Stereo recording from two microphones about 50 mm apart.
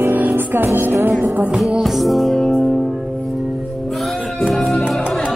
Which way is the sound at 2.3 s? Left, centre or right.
Centre.